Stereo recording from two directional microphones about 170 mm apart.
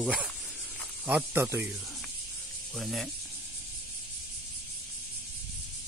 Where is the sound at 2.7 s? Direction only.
Centre (ahead or behind).